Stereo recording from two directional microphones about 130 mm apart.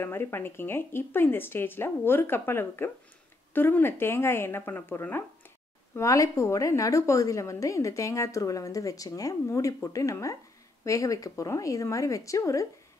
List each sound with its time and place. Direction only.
0.0 s a woman's voice: 20° left (ahead or behind)